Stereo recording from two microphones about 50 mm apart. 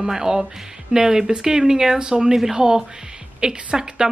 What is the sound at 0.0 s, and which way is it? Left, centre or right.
A woman's voice, centre.